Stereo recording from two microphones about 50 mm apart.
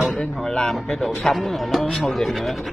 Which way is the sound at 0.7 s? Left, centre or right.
Centre.